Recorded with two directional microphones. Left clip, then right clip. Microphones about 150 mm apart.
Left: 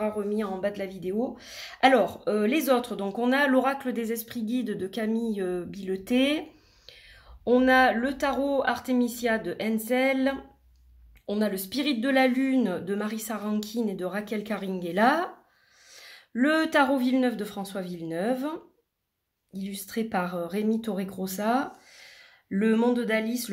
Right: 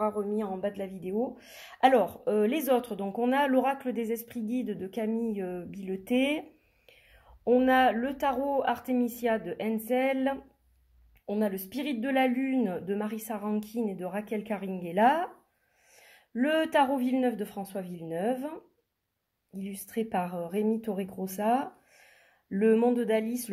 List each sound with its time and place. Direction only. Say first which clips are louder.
0.0 s speech: left 1 dB; 15° right (ahead or behind)